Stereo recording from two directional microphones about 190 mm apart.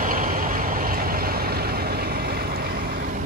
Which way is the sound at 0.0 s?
45° right (ahead or behind).